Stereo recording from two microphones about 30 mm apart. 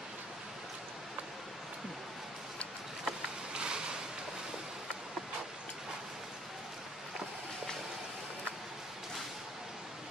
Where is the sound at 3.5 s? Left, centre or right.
Right.